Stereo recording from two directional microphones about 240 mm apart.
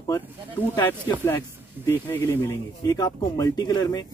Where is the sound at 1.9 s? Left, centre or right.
Centre.